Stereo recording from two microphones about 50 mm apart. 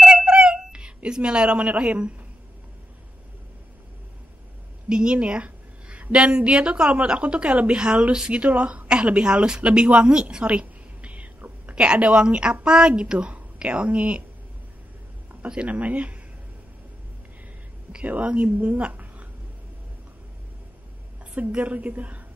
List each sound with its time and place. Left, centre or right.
0.0 s a sound: centre
4.8 s a woman's voice: centre
10.3 s whispering: right
12.6 s a woman's voice: centre
15.4 s a woman's voice: right
18.0 s a woman's voice: right
21.5 s a woman's voice: right